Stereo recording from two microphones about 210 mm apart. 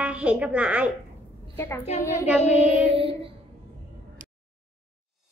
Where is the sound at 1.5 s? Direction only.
10° left (ahead or behind).